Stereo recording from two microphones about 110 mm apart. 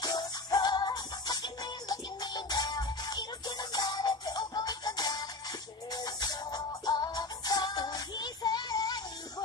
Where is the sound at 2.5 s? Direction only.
35° left (ahead or behind).